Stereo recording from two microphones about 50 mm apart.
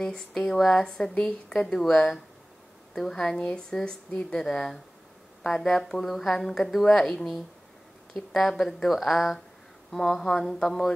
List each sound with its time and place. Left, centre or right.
0.0 s speech: centre
3.3 s speech: left; by 10.9 s centre